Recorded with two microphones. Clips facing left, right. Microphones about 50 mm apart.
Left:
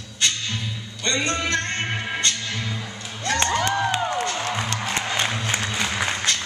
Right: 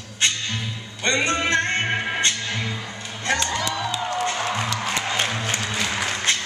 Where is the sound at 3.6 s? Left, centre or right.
Left.